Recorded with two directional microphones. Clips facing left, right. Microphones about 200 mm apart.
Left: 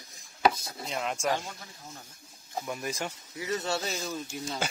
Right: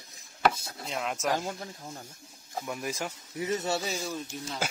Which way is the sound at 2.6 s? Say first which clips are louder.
Even; centre (ahead or behind).